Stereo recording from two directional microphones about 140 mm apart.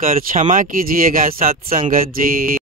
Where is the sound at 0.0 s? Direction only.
80° right.